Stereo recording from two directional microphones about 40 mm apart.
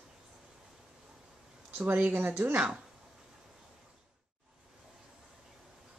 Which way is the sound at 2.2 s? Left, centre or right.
Right.